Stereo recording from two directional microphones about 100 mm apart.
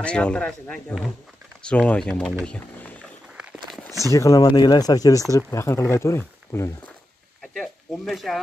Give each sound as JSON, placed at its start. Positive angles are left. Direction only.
{"t": 0.0, "sound": "speech", "side_deg": 10}
{"t": 4.0, "sound": "speech", "side_deg": 30}
{"t": 7.4, "sound": "speech", "side_deg": 0}